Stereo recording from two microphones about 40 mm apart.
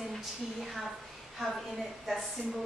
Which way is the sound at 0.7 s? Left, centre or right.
Centre.